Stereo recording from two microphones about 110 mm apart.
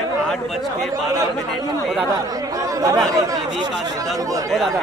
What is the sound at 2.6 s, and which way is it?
Speech, 30° right (ahead or behind).